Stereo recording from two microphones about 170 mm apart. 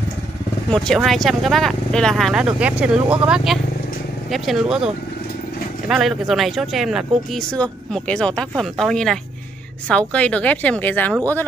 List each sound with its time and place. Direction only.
0.7 s speech: centre (ahead or behind)